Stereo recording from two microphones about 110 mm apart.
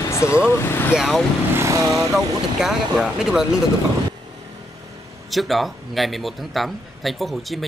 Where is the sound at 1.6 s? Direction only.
30° right (ahead or behind).